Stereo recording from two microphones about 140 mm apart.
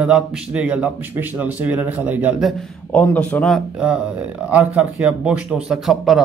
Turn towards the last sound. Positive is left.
turn(degrees=0)  # may be behind; listen again after turning